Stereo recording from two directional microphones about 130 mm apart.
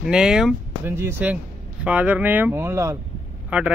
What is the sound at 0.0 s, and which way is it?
Speech, 5° right (ahead or behind).